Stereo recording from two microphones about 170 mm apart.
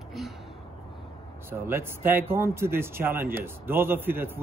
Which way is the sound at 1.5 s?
15° right (ahead or behind).